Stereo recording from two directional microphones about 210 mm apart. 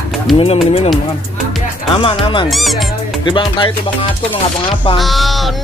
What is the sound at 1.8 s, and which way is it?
Music, 25° left (ahead or behind).